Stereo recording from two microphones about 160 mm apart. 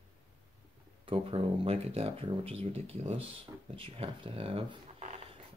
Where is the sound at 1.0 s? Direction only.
35° right (ahead or behind).